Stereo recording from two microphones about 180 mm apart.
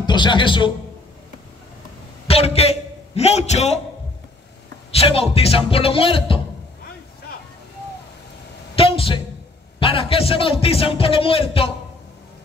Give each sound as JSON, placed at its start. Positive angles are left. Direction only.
{"t": 0.0, "sound": "a man's voice", "side_deg": 25}
{"t": 2.2, "sound": "a man's voice", "side_deg": 35}
{"t": 4.9, "sound": "speech", "side_deg": 35}
{"t": 8.7, "sound": "a sound", "side_deg": 30}
{"t": 9.8, "sound": "speech", "side_deg": 30}